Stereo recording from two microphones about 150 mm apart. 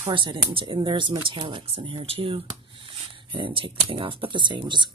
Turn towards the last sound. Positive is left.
turn(degrees=-30)  # may be behind; listen again after turning